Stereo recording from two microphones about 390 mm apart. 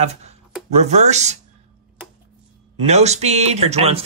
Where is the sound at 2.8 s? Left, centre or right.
Centre.